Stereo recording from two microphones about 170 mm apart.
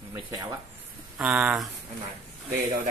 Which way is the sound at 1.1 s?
5° right (ahead or behind).